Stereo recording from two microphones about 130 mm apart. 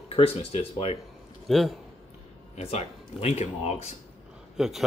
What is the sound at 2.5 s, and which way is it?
Speech, 55° left (ahead or behind).